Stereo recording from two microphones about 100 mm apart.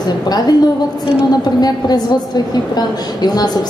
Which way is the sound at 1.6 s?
45° left (ahead or behind).